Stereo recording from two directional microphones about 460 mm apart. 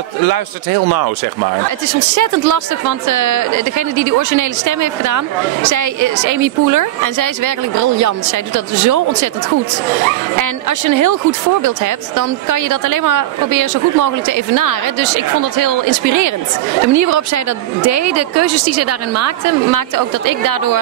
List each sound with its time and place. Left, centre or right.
2.1 s speech: right
10.4 s speech: right